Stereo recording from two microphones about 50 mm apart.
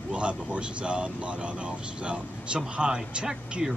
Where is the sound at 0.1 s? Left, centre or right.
Right.